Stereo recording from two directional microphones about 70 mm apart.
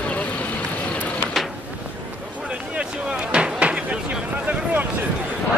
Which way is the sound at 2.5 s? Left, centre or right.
Centre.